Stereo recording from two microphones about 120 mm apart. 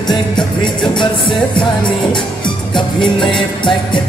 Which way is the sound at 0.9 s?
45° left (ahead or behind).